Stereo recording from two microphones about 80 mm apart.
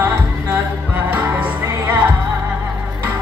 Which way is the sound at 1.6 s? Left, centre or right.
Right.